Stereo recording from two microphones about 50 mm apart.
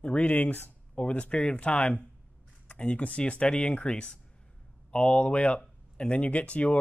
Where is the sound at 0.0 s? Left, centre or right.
Left.